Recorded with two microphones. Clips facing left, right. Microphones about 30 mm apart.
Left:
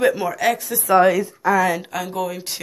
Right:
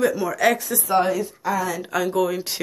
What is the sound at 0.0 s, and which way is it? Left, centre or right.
Speech, left.